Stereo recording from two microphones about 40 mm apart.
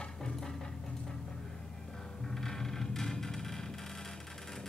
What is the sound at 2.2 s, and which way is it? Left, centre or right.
Music, centre.